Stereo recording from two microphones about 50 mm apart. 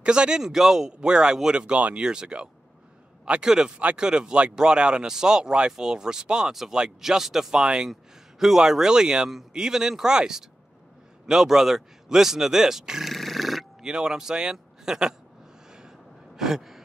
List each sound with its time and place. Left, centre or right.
0.0 s speech: centre
7.6 s speech: centre
7.9 s speech: centre
13.1 s a sound: centre
13.8 s speech: centre
16.3 s gasp: centre